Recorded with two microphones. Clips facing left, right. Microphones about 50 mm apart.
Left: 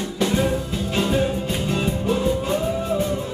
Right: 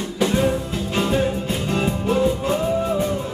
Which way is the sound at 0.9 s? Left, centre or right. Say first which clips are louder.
Right 1 dB; centre.